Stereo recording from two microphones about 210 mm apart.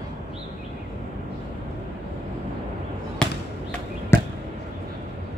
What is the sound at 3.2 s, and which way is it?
Basketball bounce, 5° left (ahead or behind).